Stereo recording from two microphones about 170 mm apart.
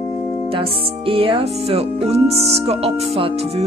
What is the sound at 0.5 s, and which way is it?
Speech, 30° right (ahead or behind).